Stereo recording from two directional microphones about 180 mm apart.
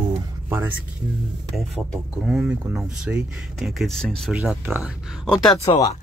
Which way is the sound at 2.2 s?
5° right (ahead or behind).